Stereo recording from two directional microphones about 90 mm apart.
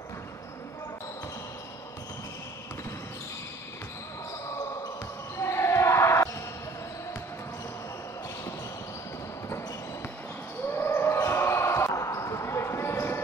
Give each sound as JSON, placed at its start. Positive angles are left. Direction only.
{"t": 5.4, "sound": "basketball bounce", "side_deg": 30}
{"t": 10.7, "sound": "basketball bounce", "side_deg": 25}